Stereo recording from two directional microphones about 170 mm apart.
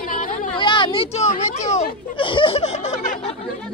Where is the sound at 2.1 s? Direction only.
30° left (ahead or behind); by 3.3 s 45° left (ahead or behind).